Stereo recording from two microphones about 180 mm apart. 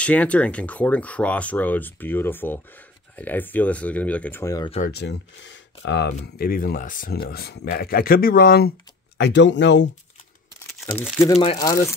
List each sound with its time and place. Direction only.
0.0 s speech: 5° left (ahead or behind)
4.6 s speech: 40° left (ahead or behind)
4.9 s speech: 85° left
6.3 s speech: 55° left (ahead or behind)
9.2 s speech: 80° left
11.5 s speech: 20° left (ahead or behind)